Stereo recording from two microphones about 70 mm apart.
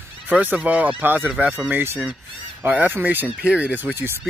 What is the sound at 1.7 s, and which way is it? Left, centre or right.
Speech, right.